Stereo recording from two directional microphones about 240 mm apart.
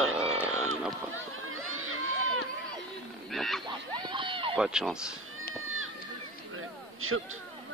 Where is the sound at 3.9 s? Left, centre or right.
Centre.